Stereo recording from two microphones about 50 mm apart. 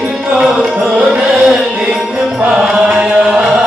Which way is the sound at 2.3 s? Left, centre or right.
Right.